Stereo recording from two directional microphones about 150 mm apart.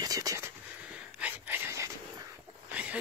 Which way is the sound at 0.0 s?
25° right (ahead or behind).